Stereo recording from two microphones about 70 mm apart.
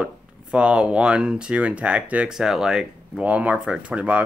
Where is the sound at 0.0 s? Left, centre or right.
Centre.